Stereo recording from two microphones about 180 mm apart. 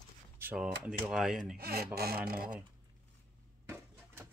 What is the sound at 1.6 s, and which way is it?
Speech, 60° right (ahead or behind).